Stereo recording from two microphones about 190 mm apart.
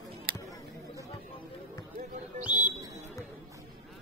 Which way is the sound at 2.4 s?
5° right (ahead or behind).